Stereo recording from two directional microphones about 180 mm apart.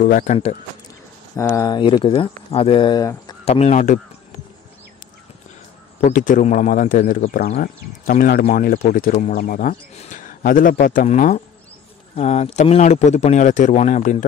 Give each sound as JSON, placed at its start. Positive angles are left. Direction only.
{"t": 0.0, "sound": "a man's voice", "side_deg": 45}
{"t": 1.3, "sound": "speech", "side_deg": 15}
{"t": 3.4, "sound": "speech", "side_deg": 35}
{"t": 5.9, "sound": "a man's voice", "side_deg": 40}